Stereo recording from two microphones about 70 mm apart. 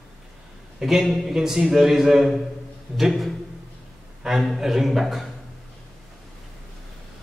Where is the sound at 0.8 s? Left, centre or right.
Centre.